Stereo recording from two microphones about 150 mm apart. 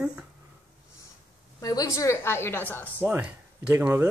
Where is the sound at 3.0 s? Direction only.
10° right (ahead or behind).